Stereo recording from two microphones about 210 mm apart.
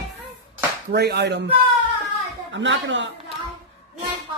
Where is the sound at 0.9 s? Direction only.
50° right (ahead or behind).